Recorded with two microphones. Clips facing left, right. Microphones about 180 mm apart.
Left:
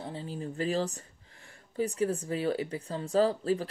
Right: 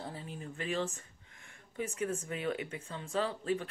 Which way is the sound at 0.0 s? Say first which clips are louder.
Left 6 dB; 30° left (ahead or behind).